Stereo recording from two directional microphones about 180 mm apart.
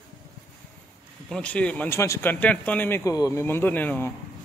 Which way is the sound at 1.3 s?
5° left (ahead or behind).